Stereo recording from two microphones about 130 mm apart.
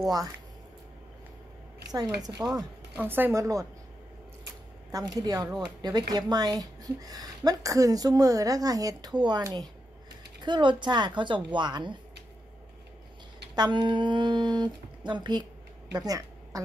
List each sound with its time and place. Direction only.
1.9 s speech: 30° right (ahead or behind)
3.0 s a woman's voice: 15° right (ahead or behind)
4.9 s speech: 30° right (ahead or behind)
13.6 s a woman's voice: 35° right (ahead or behind)